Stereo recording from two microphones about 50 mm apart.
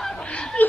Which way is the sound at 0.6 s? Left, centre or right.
Left.